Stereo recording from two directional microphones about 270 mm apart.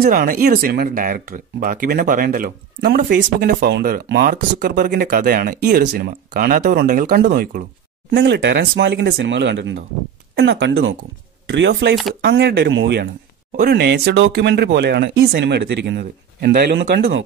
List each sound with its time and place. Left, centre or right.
0.0 s speech: right
11.9 s speech: centre
12.2 s speech: right